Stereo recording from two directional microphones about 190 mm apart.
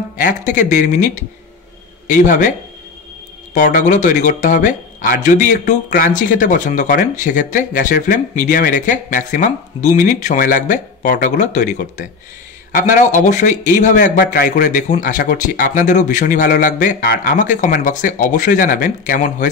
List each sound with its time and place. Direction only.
0.2 s speech: 40° left (ahead or behind)
3.5 s a man's voice: 45° left (ahead or behind)